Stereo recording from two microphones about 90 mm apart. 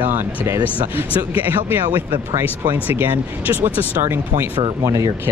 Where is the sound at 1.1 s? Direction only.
20° right (ahead or behind).